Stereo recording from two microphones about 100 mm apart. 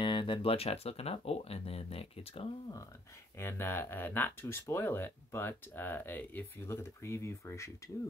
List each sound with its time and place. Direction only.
0.0 s speech: 55° left (ahead or behind); by 2.4 s 80° left
3.3 s speech: 25° left (ahead or behind)